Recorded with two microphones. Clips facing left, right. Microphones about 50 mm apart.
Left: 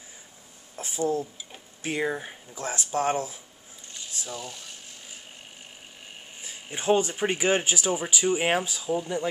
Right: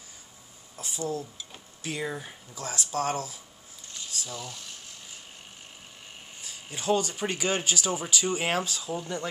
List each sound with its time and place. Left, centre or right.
0.7 s speech: left
3.9 s a sound: left
4.3 s speech: centre
6.4 s speech: left